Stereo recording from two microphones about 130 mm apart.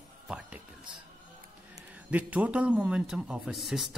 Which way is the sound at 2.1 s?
10° right (ahead or behind).